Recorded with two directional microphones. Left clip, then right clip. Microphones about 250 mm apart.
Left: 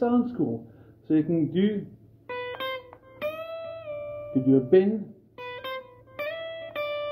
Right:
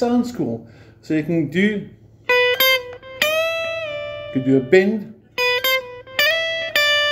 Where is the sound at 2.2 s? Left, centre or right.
Right.